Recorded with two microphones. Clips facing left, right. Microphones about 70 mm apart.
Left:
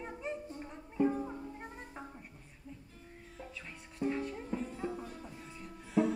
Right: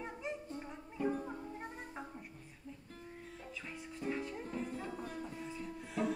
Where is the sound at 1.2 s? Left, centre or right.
Centre.